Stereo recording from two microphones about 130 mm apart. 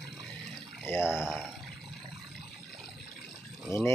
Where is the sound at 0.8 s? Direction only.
20° left (ahead or behind).